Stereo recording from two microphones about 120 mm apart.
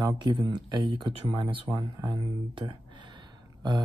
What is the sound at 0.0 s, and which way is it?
Speech, 40° right (ahead or behind).